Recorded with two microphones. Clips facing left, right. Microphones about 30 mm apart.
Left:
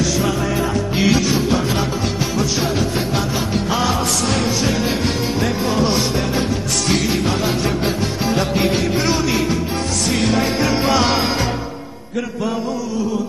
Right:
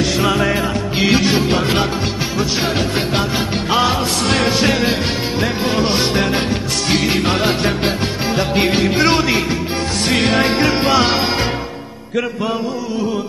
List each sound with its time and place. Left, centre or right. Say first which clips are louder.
0.0 s music: right 3 dB; right
0.9 s music: right 2 dB; right
1.3 s music: right 2 dB; right
3.2 s music: right 2 dB; right
5.4 s music: right 2 dB; right
6.9 s music: right 2 dB; right
7.2 s music: right 3 dB; right
8.9 s music: right 4 dB; right